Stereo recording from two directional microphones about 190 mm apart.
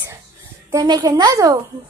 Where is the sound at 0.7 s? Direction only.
20° right (ahead or behind).